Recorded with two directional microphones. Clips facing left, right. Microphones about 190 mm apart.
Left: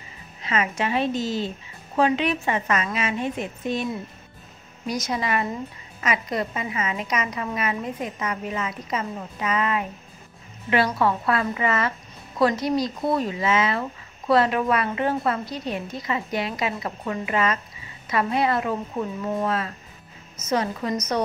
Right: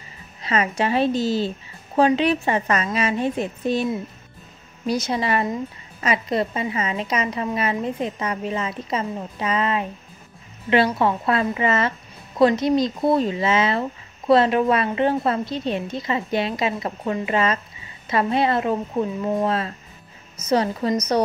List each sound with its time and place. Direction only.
0.4 s a woman's voice: 35° right (ahead or behind)
4.8 s a woman's voice: 30° right (ahead or behind)
11.0 s a woman's voice: 25° right (ahead or behind)